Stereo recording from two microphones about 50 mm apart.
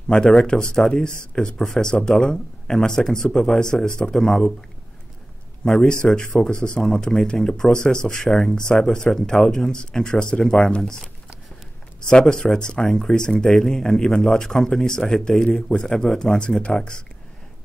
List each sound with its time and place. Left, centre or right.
0.1 s speech: centre
5.7 s speech: centre
12.1 s speech: centre